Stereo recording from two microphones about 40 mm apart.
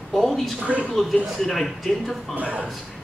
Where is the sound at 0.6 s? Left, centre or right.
Right.